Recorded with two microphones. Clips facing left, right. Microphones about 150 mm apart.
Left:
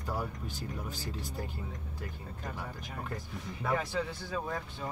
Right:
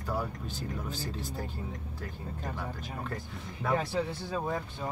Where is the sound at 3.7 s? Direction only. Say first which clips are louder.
Right 3 dB; 30° right (ahead or behind).